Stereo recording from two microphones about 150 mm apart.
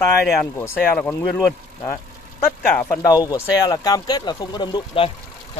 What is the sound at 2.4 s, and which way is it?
Speech, 15° left (ahead or behind).